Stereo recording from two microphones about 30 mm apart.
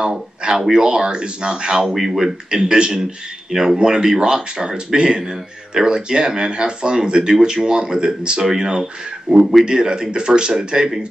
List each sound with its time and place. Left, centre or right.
0.1 s speech: right
0.7 s speech: right
2.0 s speech: centre
2.5 s speech: right
3.5 s speech: centre